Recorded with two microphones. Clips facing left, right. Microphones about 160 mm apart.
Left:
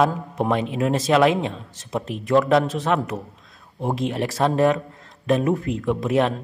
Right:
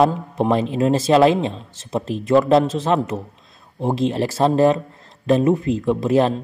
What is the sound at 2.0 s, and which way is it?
Speech, 30° right (ahead or behind).